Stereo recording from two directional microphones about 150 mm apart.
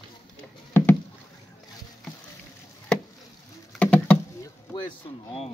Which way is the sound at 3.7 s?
10° left (ahead or behind).